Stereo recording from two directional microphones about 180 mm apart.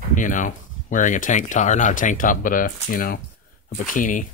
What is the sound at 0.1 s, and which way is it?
Speech, 45° left (ahead or behind).